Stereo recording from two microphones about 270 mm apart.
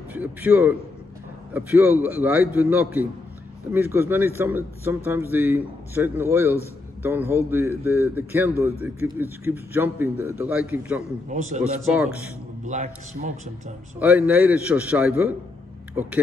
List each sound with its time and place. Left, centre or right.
0.1 s a man's voice: centre
11.2 s a man's voice: right
11.9 s a man's voice: centre
12.6 s a man's voice: right
13.9 s a man's voice: centre